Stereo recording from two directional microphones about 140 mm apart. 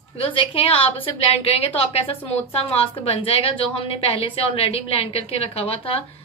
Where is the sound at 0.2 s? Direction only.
40° left (ahead or behind).